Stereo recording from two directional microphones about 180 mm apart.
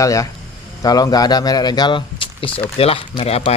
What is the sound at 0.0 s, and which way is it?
A man's voice, 20° left (ahead or behind).